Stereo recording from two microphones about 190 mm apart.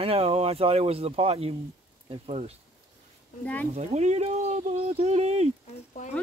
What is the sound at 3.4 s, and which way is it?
Speech, 10° left (ahead or behind).